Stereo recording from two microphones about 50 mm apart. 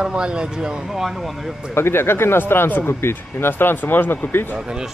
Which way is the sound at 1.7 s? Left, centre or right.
Left.